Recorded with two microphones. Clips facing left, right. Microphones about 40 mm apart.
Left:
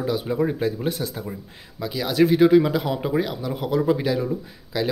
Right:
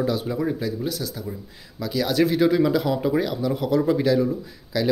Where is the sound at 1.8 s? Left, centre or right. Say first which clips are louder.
Left 1 dB; centre.